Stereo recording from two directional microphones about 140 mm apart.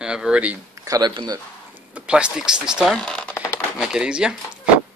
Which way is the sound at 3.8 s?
5° right (ahead or behind).